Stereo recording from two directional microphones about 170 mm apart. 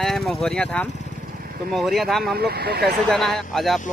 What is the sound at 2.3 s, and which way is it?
Speech, 70° right (ahead or behind).